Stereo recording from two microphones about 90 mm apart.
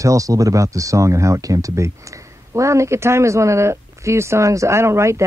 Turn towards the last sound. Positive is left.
turn(degrees=-30)  # may be behind; listen again after turning